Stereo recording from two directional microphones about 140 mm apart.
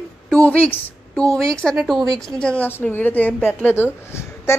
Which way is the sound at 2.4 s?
10° left (ahead or behind).